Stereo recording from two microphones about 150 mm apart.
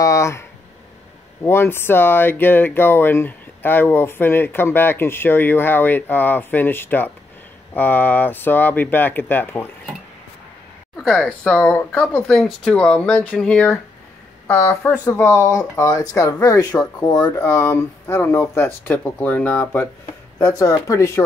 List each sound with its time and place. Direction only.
0.0 s a sound: 20° left (ahead or behind)
1.4 s speech: 15° left (ahead or behind)
11.0 s speech: centre (ahead or behind); by 21.2 s 20° left (ahead or behind)